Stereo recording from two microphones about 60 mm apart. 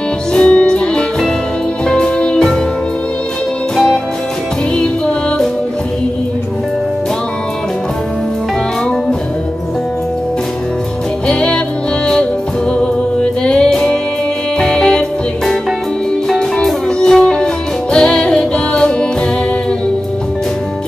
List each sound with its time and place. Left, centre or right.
0.3 s music: centre
3.7 s music: centre
11.2 s music: centre
12.7 s music: centre